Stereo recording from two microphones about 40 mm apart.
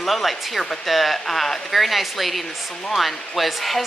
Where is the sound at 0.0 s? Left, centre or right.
Centre.